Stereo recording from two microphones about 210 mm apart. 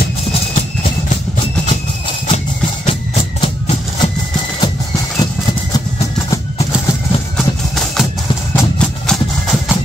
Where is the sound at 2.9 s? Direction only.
30° left (ahead or behind).